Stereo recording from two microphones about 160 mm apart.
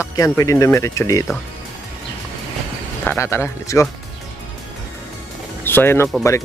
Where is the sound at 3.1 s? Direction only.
15° left (ahead or behind).